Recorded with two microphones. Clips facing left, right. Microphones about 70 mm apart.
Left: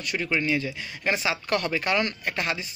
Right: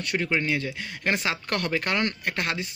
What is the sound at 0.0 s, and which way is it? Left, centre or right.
Speech, right.